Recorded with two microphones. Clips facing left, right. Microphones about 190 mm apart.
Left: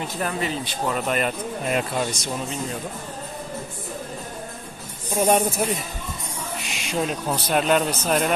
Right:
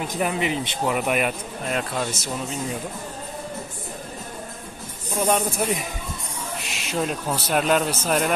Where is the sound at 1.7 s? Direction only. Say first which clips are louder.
Left 1 dB; 5° left (ahead or behind).